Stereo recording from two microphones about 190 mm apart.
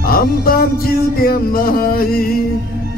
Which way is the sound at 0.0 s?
50° left (ahead or behind).